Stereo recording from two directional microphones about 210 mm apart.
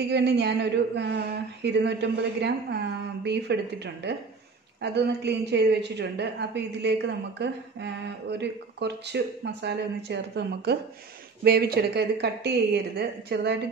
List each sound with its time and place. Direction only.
0.1 s a woman's voice: 55° right (ahead or behind)